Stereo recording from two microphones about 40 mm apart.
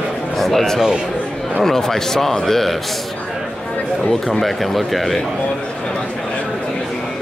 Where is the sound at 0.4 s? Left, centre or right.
Centre.